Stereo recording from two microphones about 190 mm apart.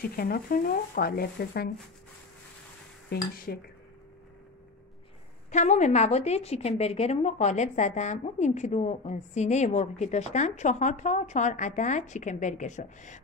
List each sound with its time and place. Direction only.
0.0 s speech: 50° left (ahead or behind)
3.1 s speech: 50° left (ahead or behind)
5.5 s speech: 40° left (ahead or behind)